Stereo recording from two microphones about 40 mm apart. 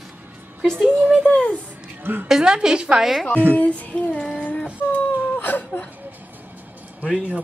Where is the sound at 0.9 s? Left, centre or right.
Right.